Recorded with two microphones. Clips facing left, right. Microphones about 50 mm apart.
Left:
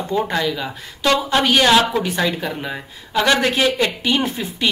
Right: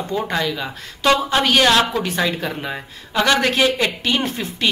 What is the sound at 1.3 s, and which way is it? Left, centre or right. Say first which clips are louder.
Speech: left 4 dB; centre.